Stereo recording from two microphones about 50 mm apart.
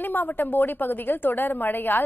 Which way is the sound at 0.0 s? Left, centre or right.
Left.